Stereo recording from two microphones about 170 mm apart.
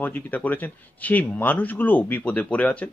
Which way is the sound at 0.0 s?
10° left (ahead or behind).